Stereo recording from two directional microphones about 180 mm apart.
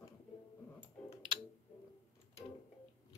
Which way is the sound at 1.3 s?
30° right (ahead or behind).